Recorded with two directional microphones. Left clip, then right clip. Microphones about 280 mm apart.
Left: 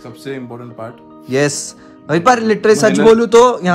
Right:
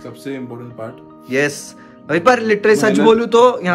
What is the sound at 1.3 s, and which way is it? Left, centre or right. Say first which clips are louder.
A man's voice: left 2 dB; centre.